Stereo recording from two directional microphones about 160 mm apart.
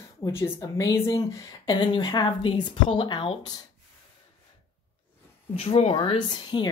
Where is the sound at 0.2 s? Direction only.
15° left (ahead or behind).